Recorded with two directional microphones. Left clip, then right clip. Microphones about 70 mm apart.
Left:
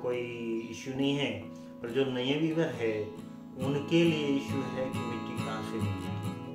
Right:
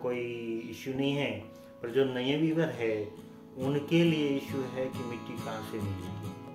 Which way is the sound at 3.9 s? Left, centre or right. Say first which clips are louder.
Left 1 dB; right.